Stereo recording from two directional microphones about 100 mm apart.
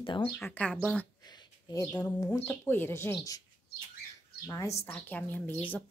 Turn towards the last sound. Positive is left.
turn(degrees=15)  # may be behind; listen again after turning